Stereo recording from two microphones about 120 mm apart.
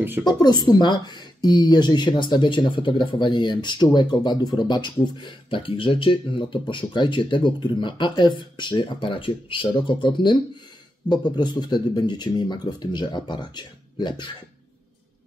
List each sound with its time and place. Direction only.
0.3 s speech: 35° left (ahead or behind)